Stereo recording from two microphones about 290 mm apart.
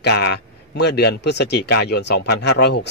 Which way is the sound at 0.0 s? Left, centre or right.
Left.